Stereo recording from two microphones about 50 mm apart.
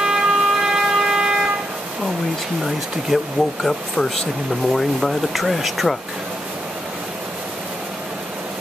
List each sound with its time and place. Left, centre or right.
0.0 s siren: centre
3.1 s speech: centre
3.6 s speech: centre